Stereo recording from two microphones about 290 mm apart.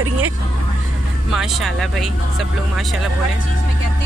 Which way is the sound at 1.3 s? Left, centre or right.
Centre.